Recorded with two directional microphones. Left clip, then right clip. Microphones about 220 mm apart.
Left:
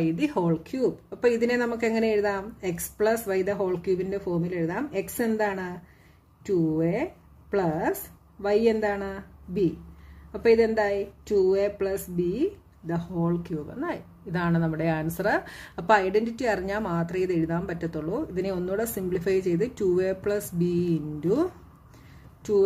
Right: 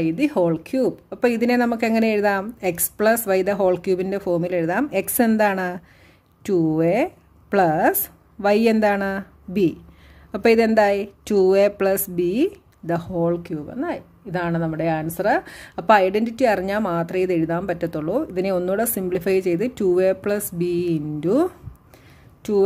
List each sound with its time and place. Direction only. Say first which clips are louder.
0.0 s speech: right 6 dB; 35° right (ahead or behind)